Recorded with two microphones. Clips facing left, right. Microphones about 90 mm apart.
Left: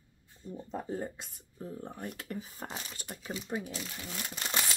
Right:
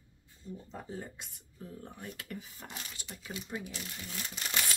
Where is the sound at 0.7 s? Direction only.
40° left (ahead or behind).